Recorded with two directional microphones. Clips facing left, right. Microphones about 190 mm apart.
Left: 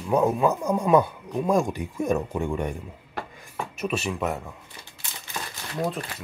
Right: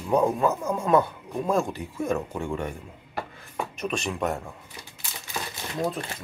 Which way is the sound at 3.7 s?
5° left (ahead or behind).